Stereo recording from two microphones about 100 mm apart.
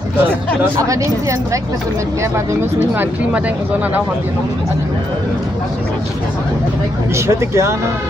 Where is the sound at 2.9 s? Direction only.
15° right (ahead or behind).